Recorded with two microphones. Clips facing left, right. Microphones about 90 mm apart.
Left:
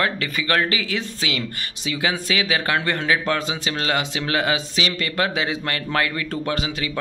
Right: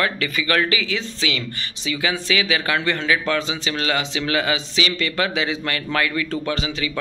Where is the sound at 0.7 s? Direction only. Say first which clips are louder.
Right 1 dB; 50° left (ahead or behind).